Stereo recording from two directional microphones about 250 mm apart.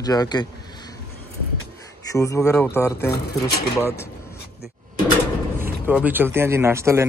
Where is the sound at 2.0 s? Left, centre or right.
Centre.